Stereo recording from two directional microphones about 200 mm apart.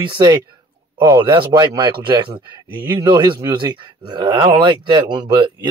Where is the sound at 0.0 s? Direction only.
20° right (ahead or behind).